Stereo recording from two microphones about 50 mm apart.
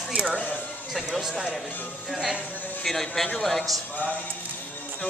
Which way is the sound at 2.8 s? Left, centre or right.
Centre.